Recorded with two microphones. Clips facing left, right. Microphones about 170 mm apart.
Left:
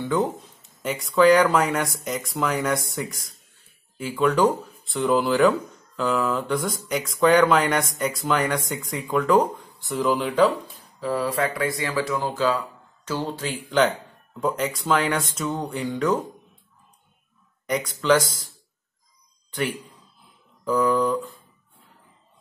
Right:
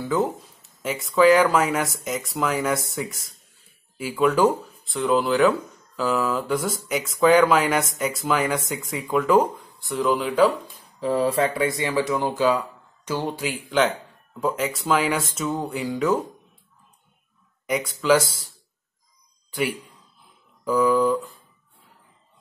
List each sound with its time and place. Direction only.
0.0 s speech: 5° right (ahead or behind)
11.0 s speech: 25° right (ahead or behind)
13.7 s speech: centre (ahead or behind)
17.6 s speech: 10° right (ahead or behind)
19.5 s speech: 10° right (ahead or behind)